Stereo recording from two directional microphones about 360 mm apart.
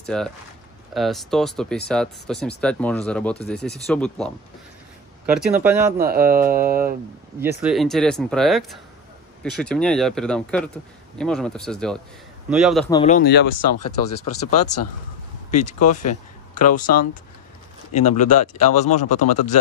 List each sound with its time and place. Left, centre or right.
0.0 s speech: centre
5.9 s speech: right
7.6 s speech: centre
12.8 s speech: centre
13.6 s speech: left
15.5 s speech: centre
17.9 s speech: centre